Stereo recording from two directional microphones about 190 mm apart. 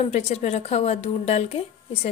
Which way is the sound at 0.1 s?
35° left (ahead or behind).